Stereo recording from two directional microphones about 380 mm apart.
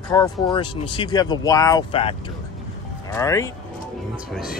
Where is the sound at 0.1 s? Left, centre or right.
Centre.